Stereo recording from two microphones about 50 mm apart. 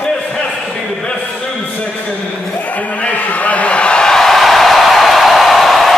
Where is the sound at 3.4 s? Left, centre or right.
Left.